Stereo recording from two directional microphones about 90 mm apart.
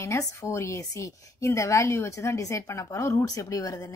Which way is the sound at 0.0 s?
30° left (ahead or behind).